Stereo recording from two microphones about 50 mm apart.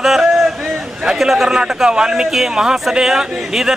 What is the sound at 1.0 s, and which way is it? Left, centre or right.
A man's voice, centre.